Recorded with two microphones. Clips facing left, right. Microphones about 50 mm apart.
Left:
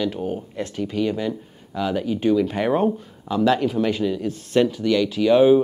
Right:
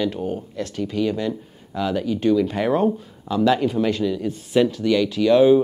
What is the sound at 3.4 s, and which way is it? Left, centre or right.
Speech, centre.